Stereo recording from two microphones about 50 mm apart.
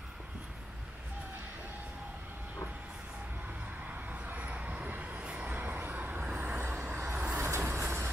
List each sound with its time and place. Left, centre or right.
4.1 s vehicle: right
6.6 s vehicle: right
7.3 s vehicle: right